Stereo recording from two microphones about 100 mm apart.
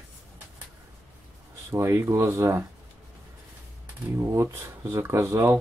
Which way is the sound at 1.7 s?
30° right (ahead or behind).